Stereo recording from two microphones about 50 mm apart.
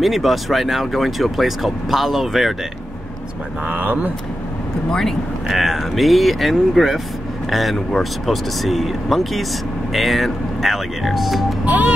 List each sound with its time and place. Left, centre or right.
0.0 s speech: centre
3.6 s speech: right
4.9 s speech: centre
11.6 s a sound: right